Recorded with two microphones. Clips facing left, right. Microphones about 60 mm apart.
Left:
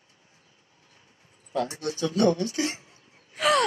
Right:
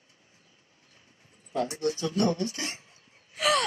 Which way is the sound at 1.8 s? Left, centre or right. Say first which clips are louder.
Left 4 dB; left.